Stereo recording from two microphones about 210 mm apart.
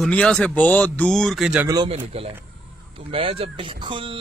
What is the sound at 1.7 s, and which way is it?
Speech, 20° right (ahead or behind).